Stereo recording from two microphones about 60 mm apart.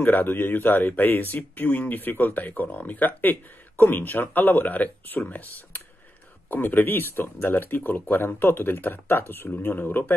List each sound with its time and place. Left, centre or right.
0.0 s speech: left